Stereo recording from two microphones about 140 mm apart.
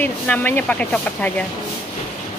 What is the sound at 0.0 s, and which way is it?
Speech, 10° left (ahead or behind).